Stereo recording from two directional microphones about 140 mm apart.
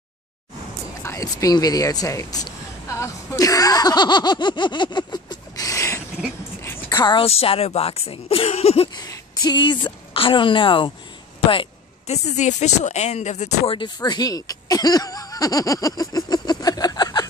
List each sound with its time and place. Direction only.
1.0 s speech: 25° left (ahead or behind)
6.9 s speech: 30° left (ahead or behind)
9.0 s a woman's voice: 30° left (ahead or behind)
12.1 s speech: 55° left (ahead or behind)
13.7 s speech: 35° left (ahead or behind)